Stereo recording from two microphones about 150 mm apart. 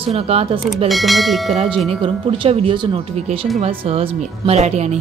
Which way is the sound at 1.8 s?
35° right (ahead or behind).